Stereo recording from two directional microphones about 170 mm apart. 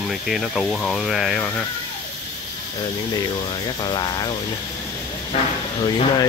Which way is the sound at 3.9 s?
25° left (ahead or behind).